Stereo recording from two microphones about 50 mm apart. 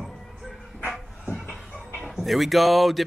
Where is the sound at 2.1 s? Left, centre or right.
Centre.